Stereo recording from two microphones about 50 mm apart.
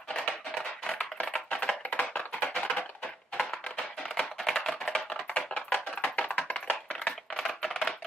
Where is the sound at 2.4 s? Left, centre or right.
Left.